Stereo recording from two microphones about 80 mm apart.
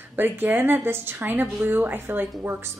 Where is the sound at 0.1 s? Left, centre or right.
Right.